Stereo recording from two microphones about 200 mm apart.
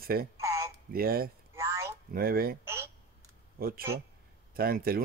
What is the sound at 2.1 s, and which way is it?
Speech, 50° right (ahead or behind).